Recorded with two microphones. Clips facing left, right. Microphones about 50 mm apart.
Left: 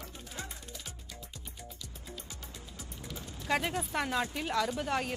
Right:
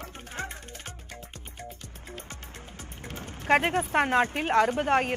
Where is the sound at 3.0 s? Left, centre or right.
Right.